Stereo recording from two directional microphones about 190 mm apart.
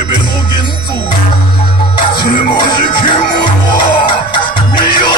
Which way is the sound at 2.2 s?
25° left (ahead or behind).